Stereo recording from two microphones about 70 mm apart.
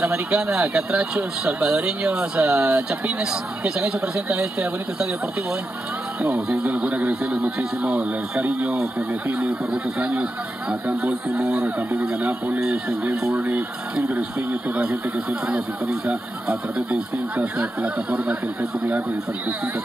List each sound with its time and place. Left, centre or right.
0.0 s speech: centre
6.5 s speech: centre
9.9 s speech: centre
14.1 s speech: right
15.4 s speech: centre